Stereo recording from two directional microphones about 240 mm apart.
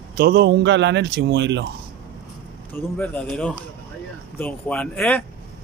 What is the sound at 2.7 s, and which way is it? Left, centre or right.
Speech, centre.